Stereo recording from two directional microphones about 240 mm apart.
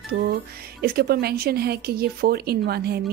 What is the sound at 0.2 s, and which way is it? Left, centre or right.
Speech, right.